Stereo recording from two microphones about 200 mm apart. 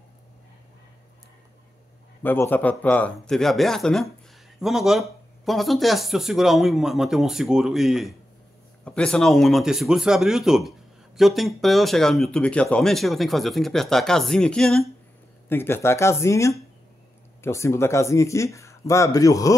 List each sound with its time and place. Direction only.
2.2 s speech: 10° left (ahead or behind)